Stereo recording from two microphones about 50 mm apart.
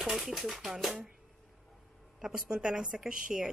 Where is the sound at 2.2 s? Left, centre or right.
Centre.